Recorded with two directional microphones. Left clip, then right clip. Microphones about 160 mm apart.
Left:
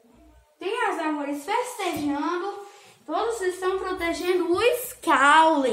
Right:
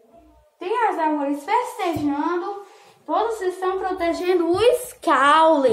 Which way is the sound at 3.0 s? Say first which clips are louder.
Right 4 dB; 15° left (ahead or behind).